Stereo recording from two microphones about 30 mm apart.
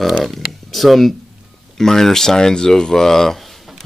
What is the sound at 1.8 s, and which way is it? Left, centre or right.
Speech, centre.